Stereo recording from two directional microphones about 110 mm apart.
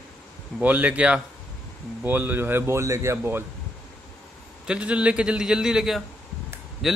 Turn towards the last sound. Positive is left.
turn(degrees=0)  # may be behind; listen again after turning